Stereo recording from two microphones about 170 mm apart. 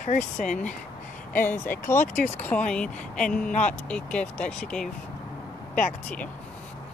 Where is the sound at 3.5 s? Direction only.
45° left (ahead or behind).